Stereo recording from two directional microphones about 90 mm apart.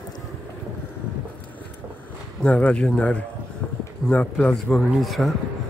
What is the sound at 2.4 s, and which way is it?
Speech, 10° left (ahead or behind).